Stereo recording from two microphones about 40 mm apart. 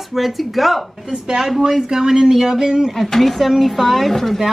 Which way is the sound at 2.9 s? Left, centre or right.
Centre.